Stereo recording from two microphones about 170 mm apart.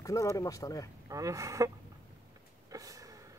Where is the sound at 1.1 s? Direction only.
20° right (ahead or behind).